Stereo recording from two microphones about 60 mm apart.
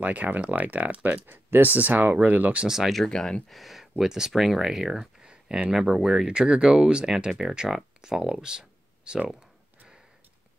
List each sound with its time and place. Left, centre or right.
0.0 s speech: right
2.6 s speech: centre
2.9 s speech: centre
3.5 s speech: centre